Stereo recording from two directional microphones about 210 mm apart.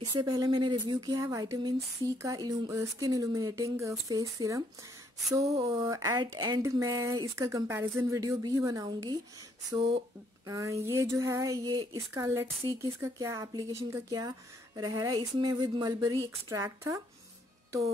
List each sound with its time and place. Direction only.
0.0 s speech: 20° right (ahead or behind)
5.4 s speech: 25° right (ahead or behind)
10.4 s speech: 15° right (ahead or behind)